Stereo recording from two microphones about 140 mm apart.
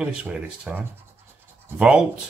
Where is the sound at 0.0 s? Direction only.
10° right (ahead or behind).